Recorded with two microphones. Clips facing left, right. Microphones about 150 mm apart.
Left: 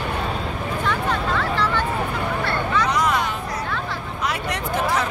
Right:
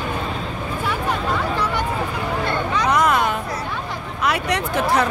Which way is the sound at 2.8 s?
55° right (ahead or behind).